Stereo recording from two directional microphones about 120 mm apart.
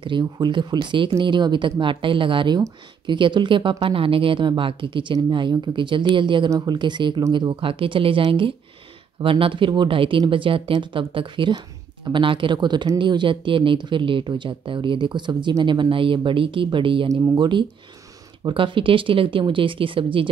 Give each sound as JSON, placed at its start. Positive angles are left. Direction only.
{"t": 0.0, "sound": "speech", "side_deg": -40}